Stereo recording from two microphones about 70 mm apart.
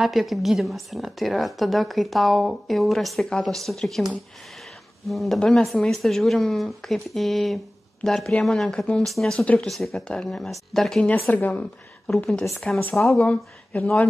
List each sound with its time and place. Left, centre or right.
0.0 s a woman's voice: centre
11.2 s speech: left
12.5 s a woman's voice: centre
13.2 s speech: centre